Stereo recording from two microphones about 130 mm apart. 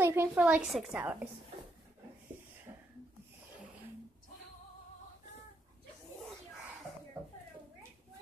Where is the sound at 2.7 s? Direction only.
30° right (ahead or behind).